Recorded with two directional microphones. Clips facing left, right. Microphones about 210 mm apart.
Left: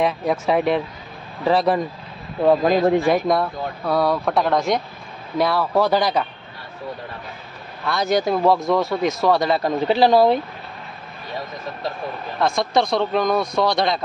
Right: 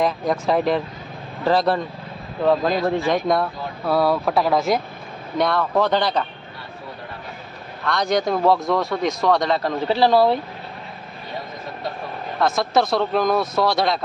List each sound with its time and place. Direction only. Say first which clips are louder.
0.0 s speech: even; 5° left (ahead or behind)
3.2 s speech: left 1 dB; centre (ahead or behind)
7.8 s speech: left 1 dB; 5° left (ahead or behind)
9.8 s speech: left 1 dB; 15° left (ahead or behind)
12.4 s speech: even; 5° right (ahead or behind)